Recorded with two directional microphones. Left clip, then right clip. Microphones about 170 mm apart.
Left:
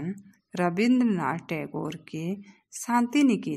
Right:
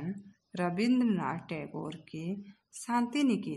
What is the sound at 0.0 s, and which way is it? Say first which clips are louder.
A woman's voice: left 5 dB; 20° left (ahead or behind).